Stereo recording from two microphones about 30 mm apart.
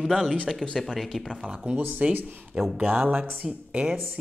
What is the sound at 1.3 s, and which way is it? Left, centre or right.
Speech, right.